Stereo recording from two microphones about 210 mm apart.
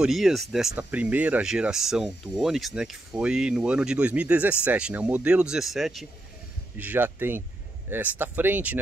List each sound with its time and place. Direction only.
0.0 s speech: centre (ahead or behind)